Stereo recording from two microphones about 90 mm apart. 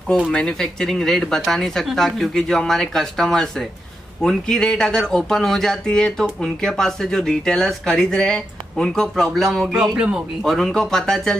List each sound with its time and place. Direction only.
0.3 s speech: 10° left (ahead or behind)
9.7 s speech: 10° right (ahead or behind)
10.4 s speech: 5° left (ahead or behind)